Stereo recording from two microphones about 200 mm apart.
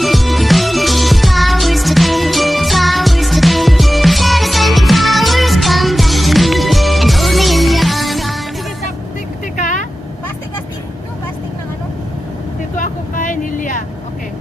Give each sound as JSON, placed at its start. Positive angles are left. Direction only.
{"t": 0.0, "sound": "music", "side_deg": 0}
{"t": 9.6, "sound": "vehicle", "side_deg": 40}
{"t": 12.7, "sound": "vehicle", "side_deg": 40}